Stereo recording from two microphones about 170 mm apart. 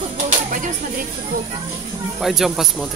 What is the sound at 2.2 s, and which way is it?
Speech, centre (ahead or behind).